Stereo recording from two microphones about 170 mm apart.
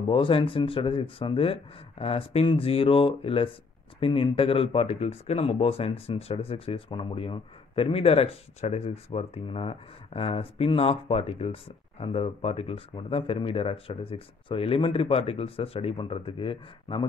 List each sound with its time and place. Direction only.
0.1 s speech: 30° left (ahead or behind)